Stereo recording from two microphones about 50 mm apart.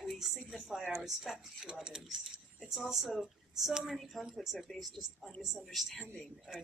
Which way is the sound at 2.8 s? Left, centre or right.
Centre.